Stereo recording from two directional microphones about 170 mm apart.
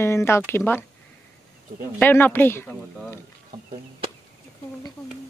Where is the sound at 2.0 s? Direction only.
10° left (ahead or behind).